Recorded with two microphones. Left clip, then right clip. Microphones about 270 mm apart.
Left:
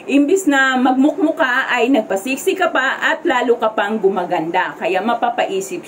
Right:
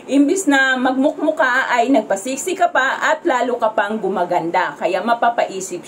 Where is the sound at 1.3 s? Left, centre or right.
Centre.